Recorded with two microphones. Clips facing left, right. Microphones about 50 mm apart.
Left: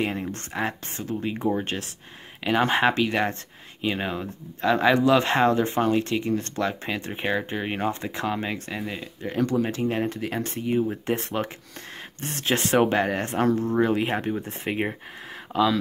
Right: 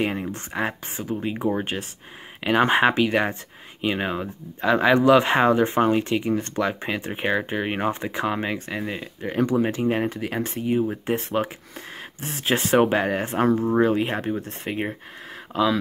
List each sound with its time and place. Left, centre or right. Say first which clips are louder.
0.0 s speech: right 2 dB; centre
4.9 s speech: right 7 dB; right
5.2 s speech: right 2 dB; centre
10.2 s speech: right 2 dB; centre
13.8 s speech: right 2 dB; centre